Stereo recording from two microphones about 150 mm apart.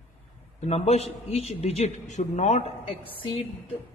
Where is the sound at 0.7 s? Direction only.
45° left (ahead or behind).